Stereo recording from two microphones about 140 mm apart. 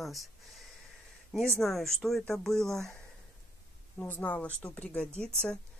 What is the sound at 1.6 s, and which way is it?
Speech, centre (ahead or behind).